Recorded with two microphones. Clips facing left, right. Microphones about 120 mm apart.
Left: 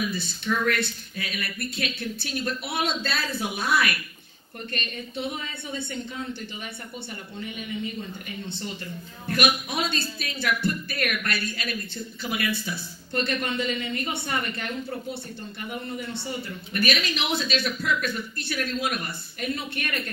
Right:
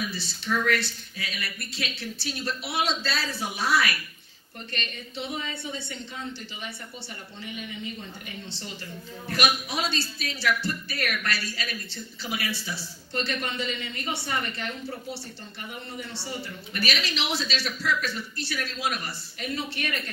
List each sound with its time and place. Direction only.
0.1 s speech: 55° left (ahead or behind)
9.3 s speech: 55° left (ahead or behind)
16.7 s speech: 55° left (ahead or behind)